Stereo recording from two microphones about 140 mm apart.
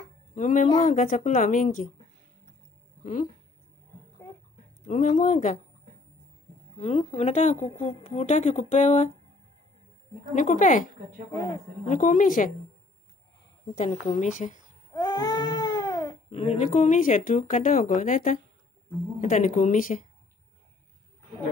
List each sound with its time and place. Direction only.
0.3 s a woman's voice: 65° left (ahead or behind)
3.0 s speech: 70° left (ahead or behind)
4.8 s a woman's voice: 60° left (ahead or behind)
6.8 s a woman's voice: 55° left (ahead or behind)
10.3 s a woman's voice: 65° left (ahead or behind)
14.0 s a woman's voice: 55° left (ahead or behind)
15.0 s baby cry: 30° left (ahead or behind)
16.3 s a woman's voice: 50° left (ahead or behind); by 18.4 s 65° left (ahead or behind)
19.2 s a woman's voice: 55° left (ahead or behind)